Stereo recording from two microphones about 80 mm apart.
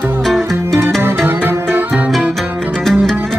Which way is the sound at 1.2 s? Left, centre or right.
Right.